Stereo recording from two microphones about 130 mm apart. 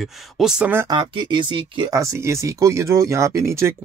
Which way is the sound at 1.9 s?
25° right (ahead or behind).